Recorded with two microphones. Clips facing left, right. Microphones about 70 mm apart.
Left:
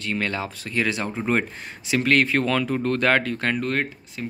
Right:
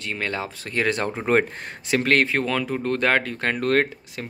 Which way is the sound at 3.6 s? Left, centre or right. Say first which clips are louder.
Right 5 dB; right.